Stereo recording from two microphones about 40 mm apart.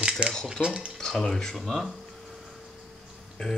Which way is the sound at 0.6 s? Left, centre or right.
Right.